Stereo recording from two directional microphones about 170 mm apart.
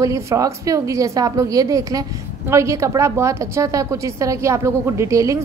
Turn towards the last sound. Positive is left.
turn(degrees=-20)  # may be behind; listen again after turning